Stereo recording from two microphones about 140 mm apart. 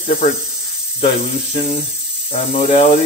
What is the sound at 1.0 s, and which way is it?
Speech, 40° left (ahead or behind).